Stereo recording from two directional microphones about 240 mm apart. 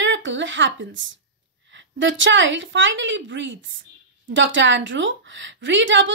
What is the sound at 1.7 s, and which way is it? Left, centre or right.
A woman's voice, right.